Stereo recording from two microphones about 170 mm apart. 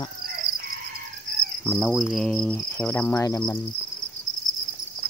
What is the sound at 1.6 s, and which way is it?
Cricket, 5° left (ahead or behind).